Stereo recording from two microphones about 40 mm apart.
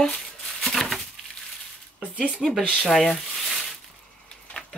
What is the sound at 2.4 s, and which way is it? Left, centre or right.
Speech, centre.